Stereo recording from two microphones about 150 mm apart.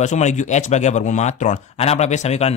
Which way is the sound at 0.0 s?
50° left (ahead or behind).